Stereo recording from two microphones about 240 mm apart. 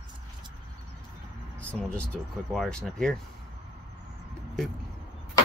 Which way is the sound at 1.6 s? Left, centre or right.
Centre.